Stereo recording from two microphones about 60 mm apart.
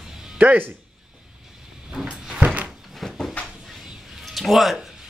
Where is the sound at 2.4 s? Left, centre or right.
Right.